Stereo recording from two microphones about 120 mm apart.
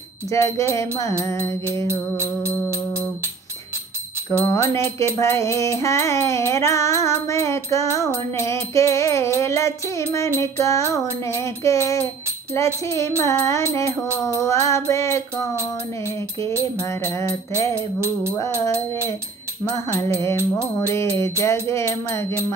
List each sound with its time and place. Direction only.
0.3 s music: 25° left (ahead or behind)
1.9 s music: 20° right (ahead or behind)
4.6 s music: 25° left (ahead or behind)
16.8 s music: 25° left (ahead or behind)
20.0 s music: 20° left (ahead or behind)
20.3 s music: 20° right (ahead or behind)
20.9 s music: 20° left (ahead or behind)